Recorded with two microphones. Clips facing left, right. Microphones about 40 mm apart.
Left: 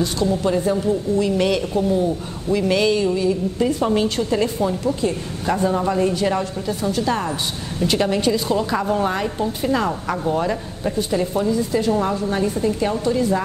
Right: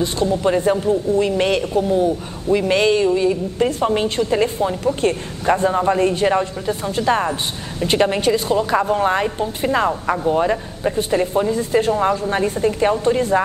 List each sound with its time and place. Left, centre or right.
0.0 s a man's voice: right
9.8 s a man's voice: centre
11.0 s a man's voice: right